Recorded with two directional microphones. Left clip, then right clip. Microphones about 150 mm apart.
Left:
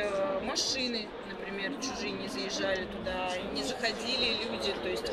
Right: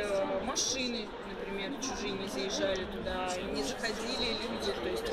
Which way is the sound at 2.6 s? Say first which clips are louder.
Left 2 dB; 20° left (ahead or behind).